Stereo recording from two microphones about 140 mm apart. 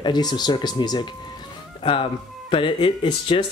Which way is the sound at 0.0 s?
30° left (ahead or behind).